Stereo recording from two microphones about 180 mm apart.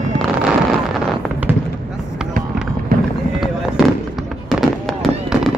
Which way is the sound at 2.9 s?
55° right (ahead or behind).